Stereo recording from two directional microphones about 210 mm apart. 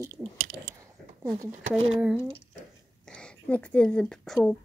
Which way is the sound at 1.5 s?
30° right (ahead or behind).